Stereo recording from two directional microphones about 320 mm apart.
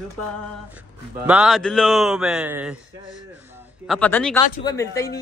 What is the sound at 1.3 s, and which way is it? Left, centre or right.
A man's voice, centre.